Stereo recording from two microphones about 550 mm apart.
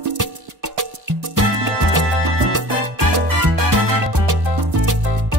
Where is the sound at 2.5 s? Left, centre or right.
Right.